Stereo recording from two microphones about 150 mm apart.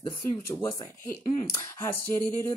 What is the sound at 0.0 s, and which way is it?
Speech, 25° left (ahead or behind).